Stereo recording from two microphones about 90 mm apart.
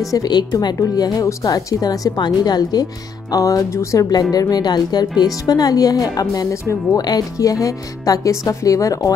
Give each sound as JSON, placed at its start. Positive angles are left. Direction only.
{"t": 0.1, "sound": "speech", "side_deg": 50}